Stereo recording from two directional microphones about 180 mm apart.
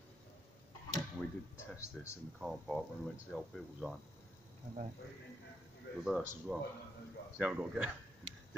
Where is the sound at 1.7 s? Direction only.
5° right (ahead or behind).